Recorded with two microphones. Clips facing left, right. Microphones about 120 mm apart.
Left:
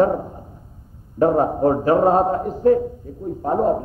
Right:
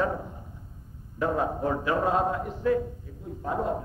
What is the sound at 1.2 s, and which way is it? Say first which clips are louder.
Mantra: left 10 dB; 40° left (ahead or behind).